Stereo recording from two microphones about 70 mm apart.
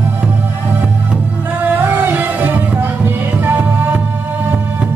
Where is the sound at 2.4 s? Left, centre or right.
Right.